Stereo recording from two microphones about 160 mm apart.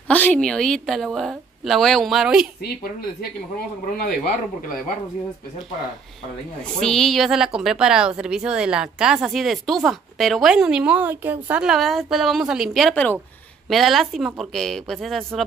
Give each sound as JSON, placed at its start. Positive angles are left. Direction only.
{"t": 0.1, "sound": "a woman's voice", "side_deg": 10}
{"t": 2.6, "sound": "speech", "side_deg": 75}
{"t": 6.8, "sound": "a woman's voice", "side_deg": 0}